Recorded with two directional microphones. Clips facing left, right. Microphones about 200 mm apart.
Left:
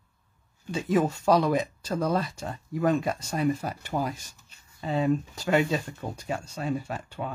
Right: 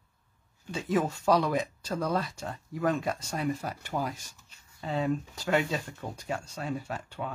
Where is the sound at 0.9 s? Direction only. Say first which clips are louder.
Left 3 dB; 20° left (ahead or behind).